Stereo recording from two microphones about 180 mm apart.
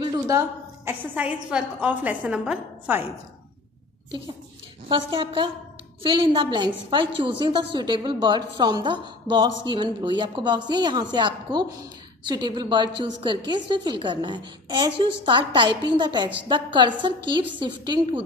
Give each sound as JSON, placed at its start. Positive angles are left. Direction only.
{"t": 0.2, "sound": "a woman's voice", "side_deg": -15}
{"t": 4.8, "sound": "a woman's voice", "side_deg": -25}